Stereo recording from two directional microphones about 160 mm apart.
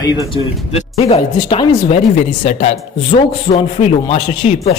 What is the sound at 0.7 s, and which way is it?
A man's voice, 40° left (ahead or behind).